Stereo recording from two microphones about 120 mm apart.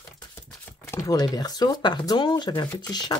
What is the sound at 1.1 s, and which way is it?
Speech, 35° left (ahead or behind).